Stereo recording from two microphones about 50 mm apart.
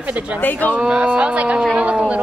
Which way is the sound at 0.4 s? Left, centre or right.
Left.